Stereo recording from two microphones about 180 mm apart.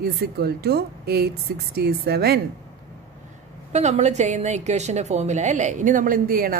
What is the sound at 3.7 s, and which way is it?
A woman's voice, 40° right (ahead or behind).